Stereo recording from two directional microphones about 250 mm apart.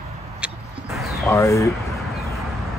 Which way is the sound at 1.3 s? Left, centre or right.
Centre.